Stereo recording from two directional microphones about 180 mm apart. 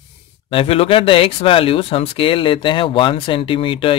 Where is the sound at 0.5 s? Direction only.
30° left (ahead or behind).